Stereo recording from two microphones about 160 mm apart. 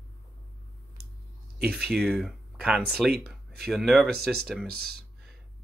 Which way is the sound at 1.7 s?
Centre (ahead or behind).